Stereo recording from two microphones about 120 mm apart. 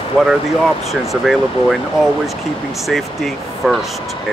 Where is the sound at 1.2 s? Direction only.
Centre (ahead or behind).